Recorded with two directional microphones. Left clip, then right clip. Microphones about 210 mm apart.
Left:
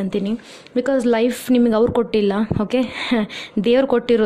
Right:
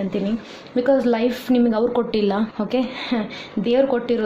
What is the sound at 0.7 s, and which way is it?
A woman's voice, 45° left (ahead or behind).